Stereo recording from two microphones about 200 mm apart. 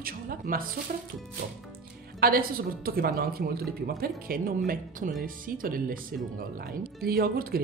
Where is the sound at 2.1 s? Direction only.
50° right (ahead or behind).